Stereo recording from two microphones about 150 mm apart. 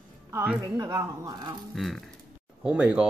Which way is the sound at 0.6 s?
25° right (ahead or behind).